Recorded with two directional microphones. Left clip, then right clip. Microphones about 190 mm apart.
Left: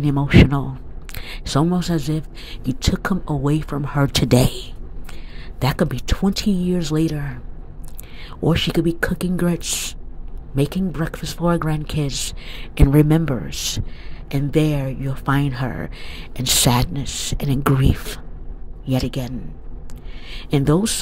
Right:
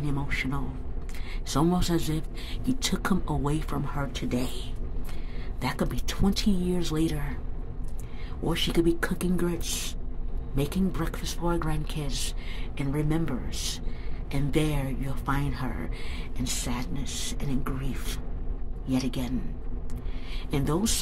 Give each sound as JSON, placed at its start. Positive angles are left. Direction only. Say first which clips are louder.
{"t": 0.0, "sound": "speech", "louder": "left 14 dB", "side_deg": 35}
{"t": 4.1, "sound": "speech", "louder": "left 18 dB", "side_deg": 50}
{"t": 5.6, "sound": "speech", "louder": "left 9 dB", "side_deg": 35}
{"t": 8.4, "sound": "speech", "louder": "left 7 dB", "side_deg": 30}
{"t": 16.9, "sound": "speech", "louder": "left 8 dB", "side_deg": 30}
{"t": 18.9, "sound": "speech", "louder": "left 6 dB", "side_deg": 30}